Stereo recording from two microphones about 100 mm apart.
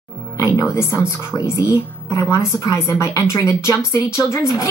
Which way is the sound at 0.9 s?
30° left (ahead or behind).